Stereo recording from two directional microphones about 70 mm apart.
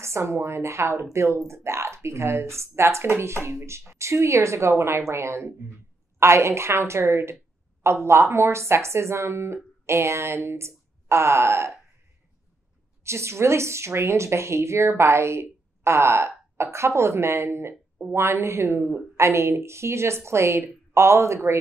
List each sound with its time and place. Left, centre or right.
0.0 s speech: right
13.0 s speech: right